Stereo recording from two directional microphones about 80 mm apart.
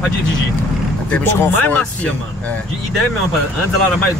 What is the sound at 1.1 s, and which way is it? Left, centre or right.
Speech, centre.